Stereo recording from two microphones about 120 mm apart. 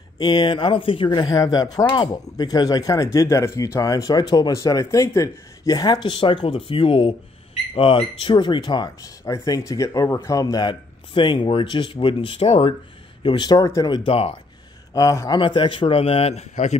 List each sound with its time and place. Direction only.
0.2 s speech: 40° left (ahead or behind)
13.2 s a man's voice: 40° left (ahead or behind); by 16.7 s 70° left (ahead or behind)